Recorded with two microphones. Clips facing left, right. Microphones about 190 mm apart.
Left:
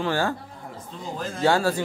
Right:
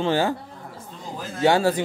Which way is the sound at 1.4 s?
20° right (ahead or behind).